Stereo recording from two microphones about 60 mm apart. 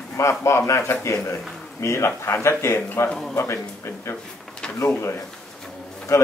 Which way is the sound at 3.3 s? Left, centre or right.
Left.